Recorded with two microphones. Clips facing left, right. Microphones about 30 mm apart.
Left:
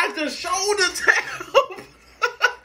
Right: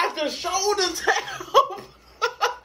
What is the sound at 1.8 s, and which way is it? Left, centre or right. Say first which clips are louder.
Laughter: left 1 dB; left.